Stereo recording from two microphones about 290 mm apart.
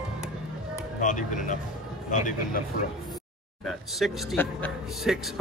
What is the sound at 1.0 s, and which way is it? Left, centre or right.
A man's voice, left.